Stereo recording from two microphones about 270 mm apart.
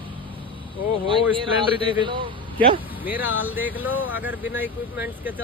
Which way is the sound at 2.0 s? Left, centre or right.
Centre.